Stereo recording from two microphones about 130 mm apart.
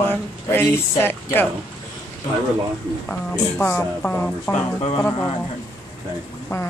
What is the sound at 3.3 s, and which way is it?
A woman's voice, 15° left (ahead or behind).